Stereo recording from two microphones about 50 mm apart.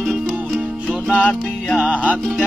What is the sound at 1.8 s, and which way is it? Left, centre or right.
Music, right.